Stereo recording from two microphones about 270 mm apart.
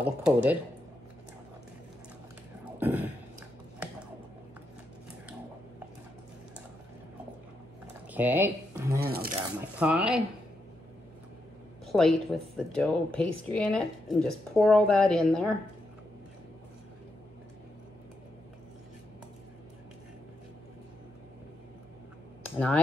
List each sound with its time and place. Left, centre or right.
0.0 s speech: centre
2.8 s burping: centre
7.8 s a sound: centre
9.0 s speech: right
9.6 s speech: centre
11.9 s speech: centre